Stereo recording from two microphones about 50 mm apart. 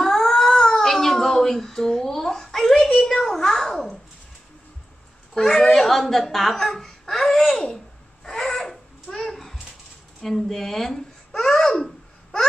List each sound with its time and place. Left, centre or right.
0.0 s cat: centre
5.3 s speech: centre
9.1 s a sound: centre
10.2 s speech: centre